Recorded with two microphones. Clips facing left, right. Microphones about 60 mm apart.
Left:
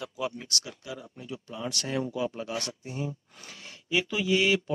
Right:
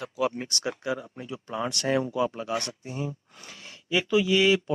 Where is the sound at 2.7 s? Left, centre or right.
Right.